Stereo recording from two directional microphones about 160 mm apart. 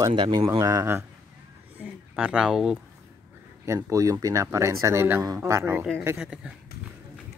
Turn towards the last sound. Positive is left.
turn(degrees=-5)  # may be behind; listen again after turning